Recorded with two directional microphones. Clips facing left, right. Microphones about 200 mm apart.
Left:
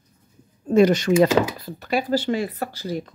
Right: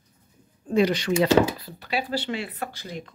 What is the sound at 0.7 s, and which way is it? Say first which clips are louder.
Speech: left 6 dB; 45° left (ahead or behind).